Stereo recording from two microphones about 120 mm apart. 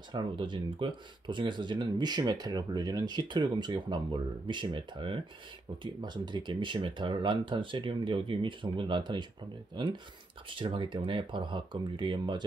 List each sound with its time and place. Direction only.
0.1 s speech: 40° right (ahead or behind)